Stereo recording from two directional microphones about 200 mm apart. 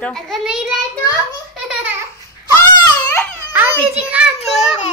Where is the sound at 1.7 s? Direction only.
5° right (ahead or behind).